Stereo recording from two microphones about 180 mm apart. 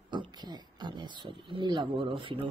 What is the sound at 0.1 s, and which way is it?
Speech, 25° right (ahead or behind).